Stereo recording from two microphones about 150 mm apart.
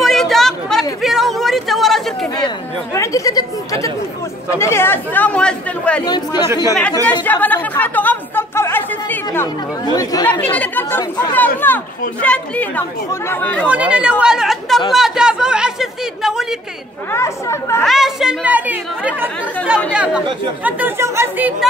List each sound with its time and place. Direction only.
0.0 s a sound: centre (ahead or behind)
2.3 s chatter: 25° left (ahead or behind)
4.6 s speech: 15° left (ahead or behind)
6.0 s speech: 30° left (ahead or behind)
7.2 s chatter: 10° left (ahead or behind)
9.9 s speech: 25° left (ahead or behind)
10.4 s speech: 10° left (ahead or behind)
13.7 s speech: 10° right (ahead or behind)
17.1 s speech: 20° left (ahead or behind)
17.8 s speech: centre (ahead or behind)